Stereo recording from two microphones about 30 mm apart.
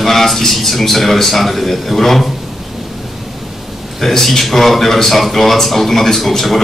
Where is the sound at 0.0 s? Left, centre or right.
Centre.